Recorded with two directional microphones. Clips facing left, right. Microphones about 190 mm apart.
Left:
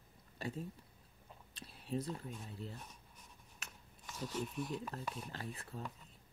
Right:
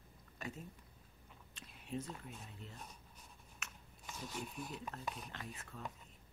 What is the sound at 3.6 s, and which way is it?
Scissors, 35° left (ahead or behind).